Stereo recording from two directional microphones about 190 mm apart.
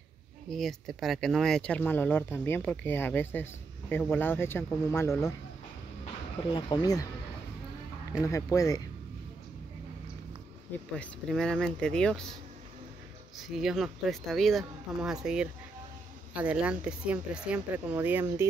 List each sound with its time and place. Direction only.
0.5 s speech: centre (ahead or behind)
6.5 s speech: 20° left (ahead or behind)
8.2 s speech: 15° left (ahead or behind)
11.0 s speech: 5° left (ahead or behind)
13.4 s speech: centre (ahead or behind)